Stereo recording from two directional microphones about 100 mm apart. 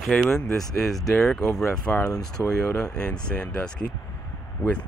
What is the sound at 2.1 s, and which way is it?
Speech, 35° left (ahead or behind).